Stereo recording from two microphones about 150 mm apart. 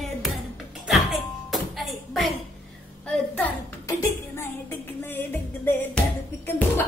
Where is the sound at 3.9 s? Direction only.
15° left (ahead or behind).